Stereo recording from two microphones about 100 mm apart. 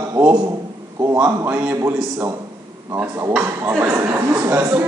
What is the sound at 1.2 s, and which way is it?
Speech, 20° right (ahead or behind).